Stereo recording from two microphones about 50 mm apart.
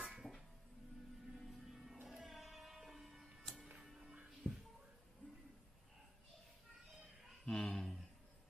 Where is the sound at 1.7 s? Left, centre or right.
Centre.